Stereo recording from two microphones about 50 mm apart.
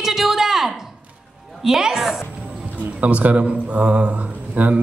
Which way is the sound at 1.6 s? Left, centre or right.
Centre.